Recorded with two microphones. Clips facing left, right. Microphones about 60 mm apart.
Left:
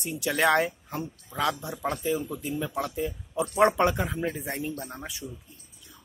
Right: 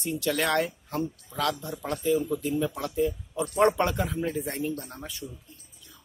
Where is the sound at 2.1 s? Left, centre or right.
Centre.